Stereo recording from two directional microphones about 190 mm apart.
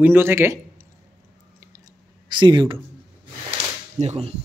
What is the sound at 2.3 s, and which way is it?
Speech, 25° right (ahead or behind).